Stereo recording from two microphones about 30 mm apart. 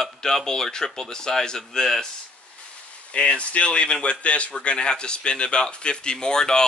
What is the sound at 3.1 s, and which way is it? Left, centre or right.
A man's voice, left.